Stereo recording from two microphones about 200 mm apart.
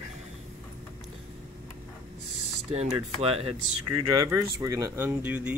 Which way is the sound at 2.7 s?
30° right (ahead or behind).